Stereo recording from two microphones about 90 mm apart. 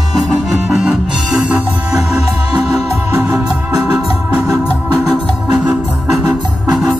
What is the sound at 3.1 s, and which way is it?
Organ, 15° right (ahead or behind).